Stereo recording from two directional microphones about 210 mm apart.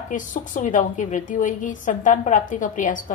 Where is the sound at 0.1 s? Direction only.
40° left (ahead or behind).